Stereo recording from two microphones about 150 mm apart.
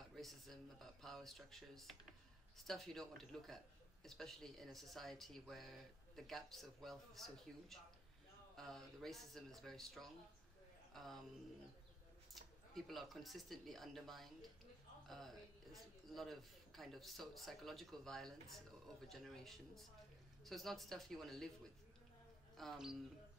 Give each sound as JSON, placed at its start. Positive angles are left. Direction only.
{"t": 0.1, "sound": "a man's voice", "side_deg": 0}
{"t": 12.7, "sound": "a man's voice", "side_deg": 0}
{"t": 22.6, "sound": "a man's voice", "side_deg": 0}